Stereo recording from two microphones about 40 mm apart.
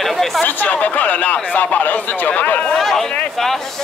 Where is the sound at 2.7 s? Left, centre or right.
Centre.